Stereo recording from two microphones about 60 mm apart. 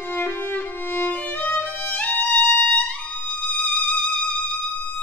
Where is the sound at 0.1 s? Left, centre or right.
Left.